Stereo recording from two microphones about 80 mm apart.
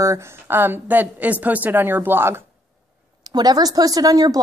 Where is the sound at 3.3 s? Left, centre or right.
Right.